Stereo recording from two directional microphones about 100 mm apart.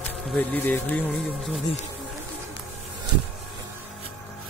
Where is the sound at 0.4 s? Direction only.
20° left (ahead or behind).